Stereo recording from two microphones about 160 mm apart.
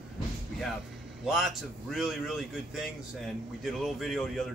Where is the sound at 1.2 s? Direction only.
Centre (ahead or behind).